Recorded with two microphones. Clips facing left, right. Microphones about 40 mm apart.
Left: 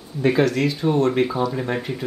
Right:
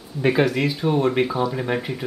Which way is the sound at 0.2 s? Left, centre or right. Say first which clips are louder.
Left 1 dB; centre.